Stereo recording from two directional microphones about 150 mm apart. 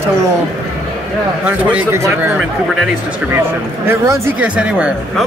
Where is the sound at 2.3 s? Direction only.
5° right (ahead or behind).